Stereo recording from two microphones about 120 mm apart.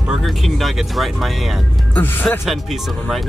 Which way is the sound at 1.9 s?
15° left (ahead or behind).